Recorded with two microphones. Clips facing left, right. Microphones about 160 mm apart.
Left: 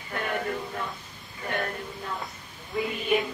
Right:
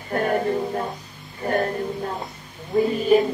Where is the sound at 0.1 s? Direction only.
40° right (ahead or behind).